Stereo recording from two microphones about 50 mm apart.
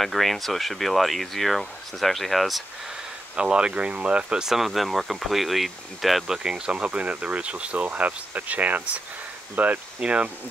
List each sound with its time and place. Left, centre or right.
0.0 s speech: centre
3.3 s speech: centre
4.4 s speech: centre; by 10.2 s right